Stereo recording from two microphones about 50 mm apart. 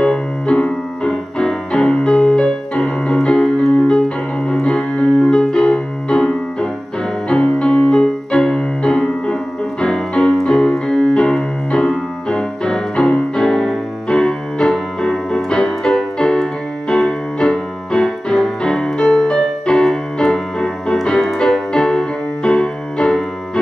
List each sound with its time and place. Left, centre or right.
0.0 s music: centre
4.5 s keyboard: centre
7.2 s music: left
14.0 s piano: centre
16.9 s music: centre